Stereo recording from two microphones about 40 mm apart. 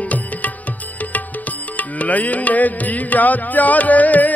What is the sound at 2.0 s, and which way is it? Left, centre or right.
Music, left.